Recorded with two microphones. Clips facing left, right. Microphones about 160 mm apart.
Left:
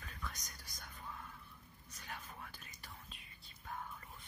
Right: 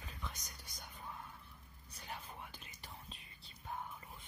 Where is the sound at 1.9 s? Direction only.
30° right (ahead or behind).